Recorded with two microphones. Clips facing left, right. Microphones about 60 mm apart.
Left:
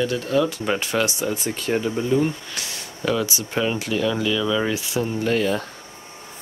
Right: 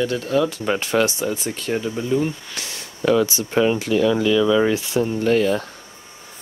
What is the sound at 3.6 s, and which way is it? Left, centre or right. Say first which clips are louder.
Speech: right 5 dB; right.